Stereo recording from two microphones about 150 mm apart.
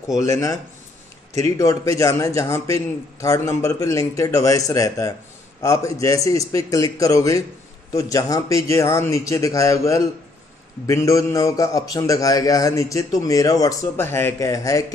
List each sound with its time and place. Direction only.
0.2 s a man's voice: 20° left (ahead or behind)